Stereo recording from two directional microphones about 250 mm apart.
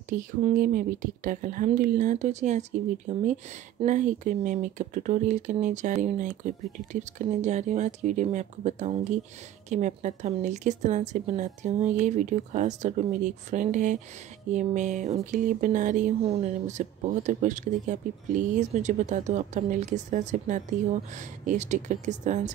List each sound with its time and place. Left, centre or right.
0.4 s speech: right